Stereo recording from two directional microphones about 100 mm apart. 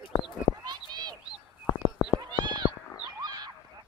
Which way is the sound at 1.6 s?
35° left (ahead or behind).